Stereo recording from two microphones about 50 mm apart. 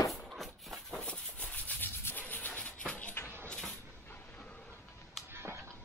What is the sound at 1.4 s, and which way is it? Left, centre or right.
Rub, left.